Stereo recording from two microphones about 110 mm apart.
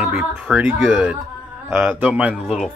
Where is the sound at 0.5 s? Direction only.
5° left (ahead or behind).